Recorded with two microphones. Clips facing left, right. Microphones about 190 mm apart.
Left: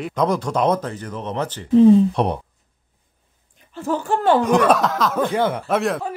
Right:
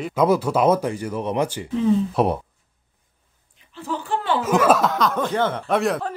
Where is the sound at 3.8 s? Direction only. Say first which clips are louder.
Left 5 dB; 45° left (ahead or behind).